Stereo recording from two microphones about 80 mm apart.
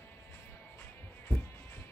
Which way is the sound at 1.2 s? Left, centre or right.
Left.